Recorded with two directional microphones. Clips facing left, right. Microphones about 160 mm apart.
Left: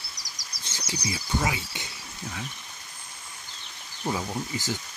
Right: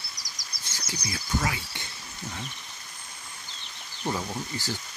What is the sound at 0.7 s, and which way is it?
Speech, 10° left (ahead or behind).